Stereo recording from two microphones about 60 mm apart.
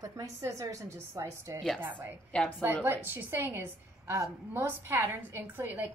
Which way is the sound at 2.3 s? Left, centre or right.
Centre.